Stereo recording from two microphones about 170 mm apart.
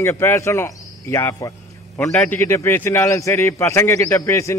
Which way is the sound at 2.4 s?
15° left (ahead or behind).